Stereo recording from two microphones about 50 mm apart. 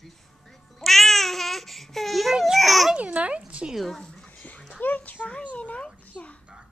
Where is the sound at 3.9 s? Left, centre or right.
Centre.